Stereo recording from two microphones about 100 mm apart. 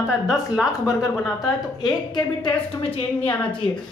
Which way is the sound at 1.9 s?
45° left (ahead or behind).